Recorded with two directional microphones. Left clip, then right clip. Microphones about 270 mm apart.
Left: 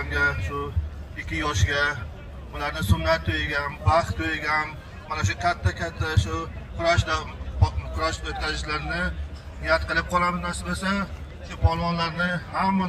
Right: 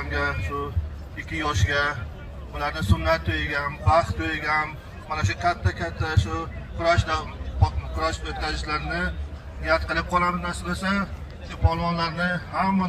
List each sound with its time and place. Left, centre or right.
0.1 s a man's voice: centre